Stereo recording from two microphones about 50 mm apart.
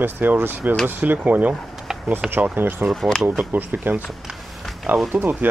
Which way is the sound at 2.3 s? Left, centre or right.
Right.